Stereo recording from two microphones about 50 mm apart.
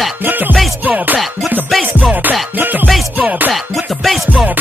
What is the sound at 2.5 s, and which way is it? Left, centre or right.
Music, right.